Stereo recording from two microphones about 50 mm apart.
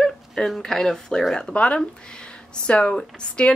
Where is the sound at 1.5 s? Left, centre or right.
Left.